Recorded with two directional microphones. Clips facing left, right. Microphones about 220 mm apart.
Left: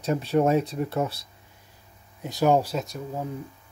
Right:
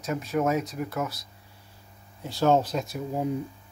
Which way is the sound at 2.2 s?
15° left (ahead or behind).